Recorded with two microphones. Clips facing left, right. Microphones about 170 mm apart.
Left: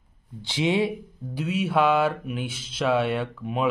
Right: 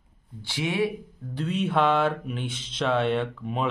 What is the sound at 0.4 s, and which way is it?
Speech, 20° left (ahead or behind).